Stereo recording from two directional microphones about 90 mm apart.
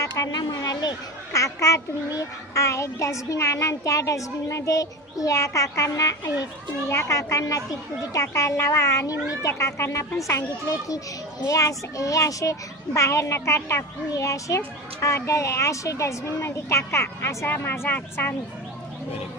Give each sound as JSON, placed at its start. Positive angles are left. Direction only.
{"t": 0.0, "sound": "speech", "side_deg": 40}
{"t": 1.3, "sound": "a child's voice", "side_deg": 35}